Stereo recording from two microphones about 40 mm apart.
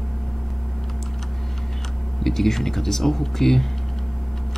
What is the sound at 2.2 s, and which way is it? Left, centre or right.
Speech, centre.